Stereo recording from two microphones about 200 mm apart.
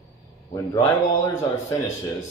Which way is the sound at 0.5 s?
20° left (ahead or behind).